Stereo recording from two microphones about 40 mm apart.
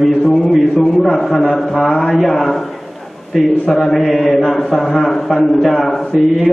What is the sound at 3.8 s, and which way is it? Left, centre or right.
A man's voice, centre.